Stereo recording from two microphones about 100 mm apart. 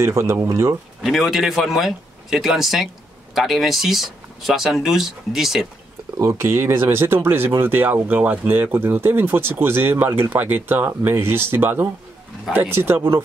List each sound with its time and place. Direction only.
0.0 s speech: 30° right (ahead or behind)
1.0 s speech: centre (ahead or behind)
6.1 s speech: 25° right (ahead or behind)